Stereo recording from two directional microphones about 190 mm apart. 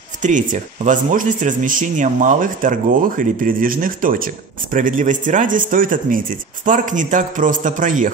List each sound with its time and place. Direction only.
0.2 s speech: 40° right (ahead or behind)